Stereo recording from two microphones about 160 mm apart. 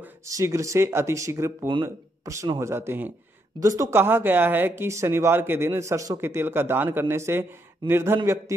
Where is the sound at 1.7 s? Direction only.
25° right (ahead or behind).